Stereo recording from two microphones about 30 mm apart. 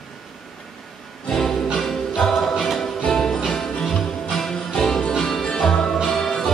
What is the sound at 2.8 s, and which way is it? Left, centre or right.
Music, left.